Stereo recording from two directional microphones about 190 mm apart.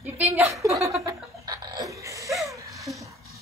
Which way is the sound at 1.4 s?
20° right (ahead or behind).